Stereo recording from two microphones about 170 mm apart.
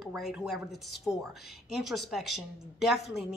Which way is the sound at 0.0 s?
Centre (ahead or behind).